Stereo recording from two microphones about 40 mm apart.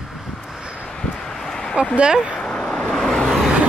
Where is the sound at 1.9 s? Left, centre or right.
Right.